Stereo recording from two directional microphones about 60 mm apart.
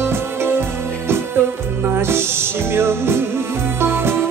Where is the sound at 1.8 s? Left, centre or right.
Right.